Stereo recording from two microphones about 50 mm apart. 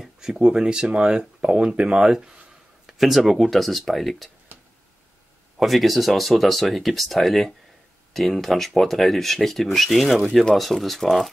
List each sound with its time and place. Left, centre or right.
0.0 s speech: centre
4.5 s a sound: right
5.6 s speech: centre